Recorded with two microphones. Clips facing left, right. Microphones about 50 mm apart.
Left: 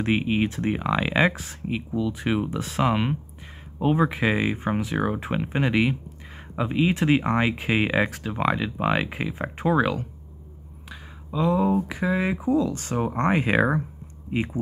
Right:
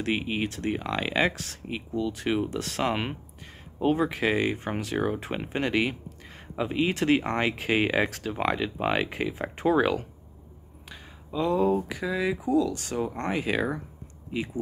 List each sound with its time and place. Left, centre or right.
0.0 s speech: centre
10.9 s a sound: centre
11.9 s speech: left